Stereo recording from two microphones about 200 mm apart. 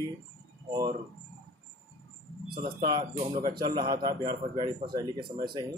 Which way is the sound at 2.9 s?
25° right (ahead or behind).